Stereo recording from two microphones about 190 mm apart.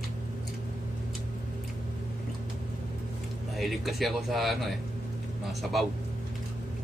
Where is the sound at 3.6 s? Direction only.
Centre (ahead or behind).